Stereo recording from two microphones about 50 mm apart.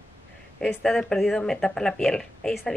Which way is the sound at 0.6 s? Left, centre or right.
Centre.